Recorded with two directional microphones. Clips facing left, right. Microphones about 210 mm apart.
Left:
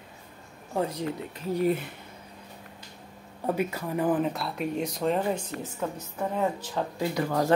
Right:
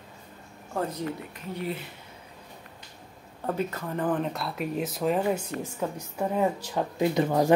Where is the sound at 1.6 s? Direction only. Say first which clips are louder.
Left 8 dB; 50° left (ahead or behind).